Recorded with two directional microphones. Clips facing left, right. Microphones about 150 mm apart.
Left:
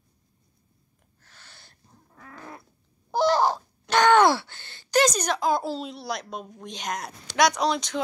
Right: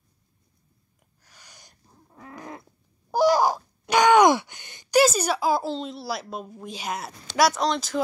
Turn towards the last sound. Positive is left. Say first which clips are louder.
# even
turn(degrees=0)  # may be behind; listen again after turning